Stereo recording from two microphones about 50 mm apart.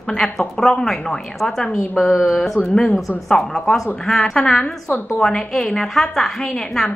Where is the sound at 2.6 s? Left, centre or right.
Centre.